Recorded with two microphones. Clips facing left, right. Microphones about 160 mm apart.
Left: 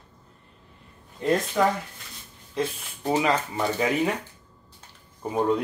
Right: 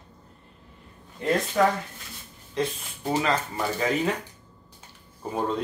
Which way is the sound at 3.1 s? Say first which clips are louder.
Left 2 dB; 10° left (ahead or behind).